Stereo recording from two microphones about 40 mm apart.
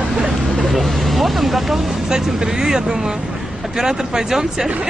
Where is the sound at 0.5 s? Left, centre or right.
Centre.